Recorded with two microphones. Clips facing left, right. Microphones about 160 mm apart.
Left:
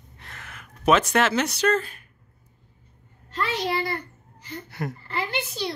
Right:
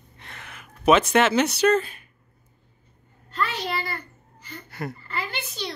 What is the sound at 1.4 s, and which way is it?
Speech, 5° right (ahead or behind).